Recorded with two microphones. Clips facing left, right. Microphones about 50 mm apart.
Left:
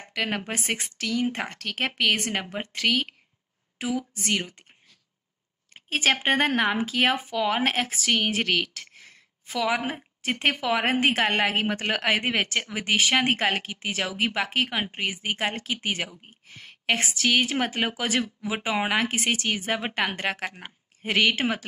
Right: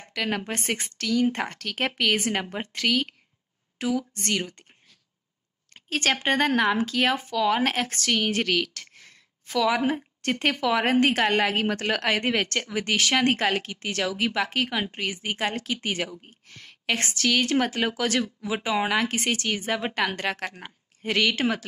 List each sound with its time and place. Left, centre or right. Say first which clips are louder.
0.1 s speech: even; centre
3.7 s speech: right 2 dB; centre
5.8 s speech: left 1 dB; centre
8.3 s a sound: even; centre
9.6 s speech: right 3 dB; centre
11.2 s speech: right 1 dB; left
15.6 s speech: right 1 dB; centre; by 18.9 s left
19.1 s speech: even; centre
20.0 s speech: right 1 dB; left
20.2 s speech: even; centre